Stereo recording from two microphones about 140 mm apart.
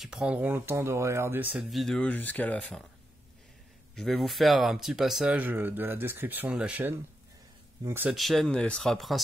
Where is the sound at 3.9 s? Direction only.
Centre (ahead or behind); by 8.1 s 15° right (ahead or behind).